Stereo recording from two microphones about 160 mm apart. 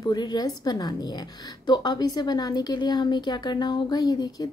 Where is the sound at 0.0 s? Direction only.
25° left (ahead or behind).